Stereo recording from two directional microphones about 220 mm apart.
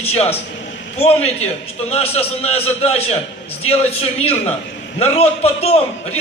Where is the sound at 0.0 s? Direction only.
25° left (ahead or behind).